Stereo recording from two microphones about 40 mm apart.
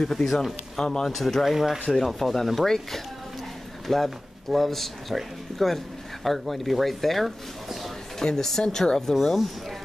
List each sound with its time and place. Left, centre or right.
0.1 s speech: centre
0.7 s speech: centre
1.4 s speech: centre
1.9 s speech: centre